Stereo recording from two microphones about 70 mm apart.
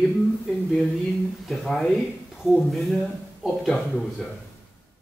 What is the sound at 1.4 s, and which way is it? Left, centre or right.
Speech, centre.